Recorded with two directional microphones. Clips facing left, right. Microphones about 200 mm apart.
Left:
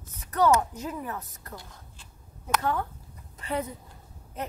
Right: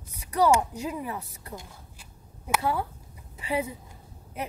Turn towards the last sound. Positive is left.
turn(degrees=-10)  # may be behind; listen again after turning